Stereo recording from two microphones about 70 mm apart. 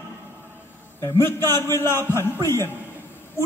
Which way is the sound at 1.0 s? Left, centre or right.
Left.